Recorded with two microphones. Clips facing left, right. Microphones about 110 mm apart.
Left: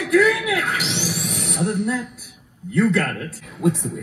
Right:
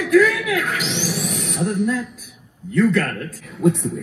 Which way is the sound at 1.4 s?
20° left (ahead or behind).